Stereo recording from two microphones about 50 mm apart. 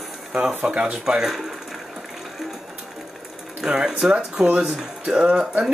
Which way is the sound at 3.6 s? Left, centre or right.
Centre.